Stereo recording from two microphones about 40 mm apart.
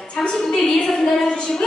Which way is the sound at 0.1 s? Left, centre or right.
Left.